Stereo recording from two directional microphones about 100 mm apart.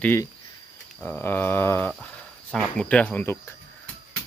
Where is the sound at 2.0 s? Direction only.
10° left (ahead or behind).